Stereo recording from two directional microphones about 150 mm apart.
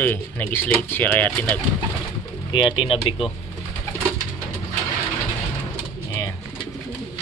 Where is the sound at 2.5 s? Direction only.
35° left (ahead or behind).